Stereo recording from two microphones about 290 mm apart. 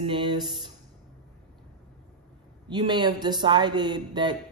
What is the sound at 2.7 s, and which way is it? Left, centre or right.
Speech, centre.